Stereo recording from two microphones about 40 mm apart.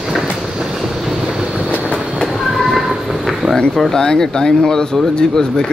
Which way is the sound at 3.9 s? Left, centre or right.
Centre.